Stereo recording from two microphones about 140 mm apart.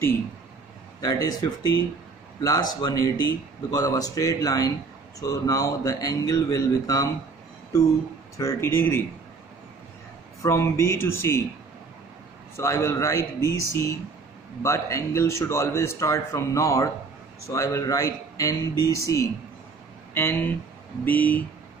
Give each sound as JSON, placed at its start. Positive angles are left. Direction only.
{"t": 1.0, "sound": "a man's voice", "side_deg": 25}
{"t": 8.4, "sound": "speech", "side_deg": 20}
{"t": 10.4, "sound": "a man's voice", "side_deg": 20}
{"t": 12.5, "sound": "a man's voice", "side_deg": 20}